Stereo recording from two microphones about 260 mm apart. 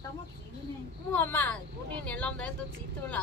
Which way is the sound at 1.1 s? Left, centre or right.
Centre.